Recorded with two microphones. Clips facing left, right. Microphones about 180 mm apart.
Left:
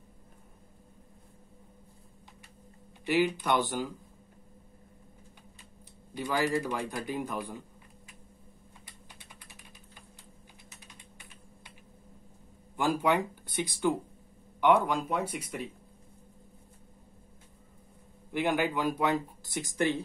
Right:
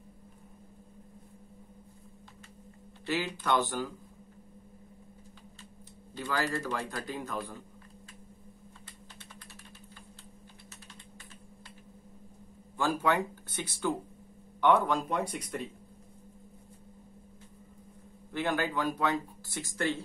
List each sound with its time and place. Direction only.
3.1 s speech: 15° left (ahead or behind)
6.1 s speech: 15° left (ahead or behind)
12.7 s speech: 15° left (ahead or behind)
18.3 s speech: 15° left (ahead or behind)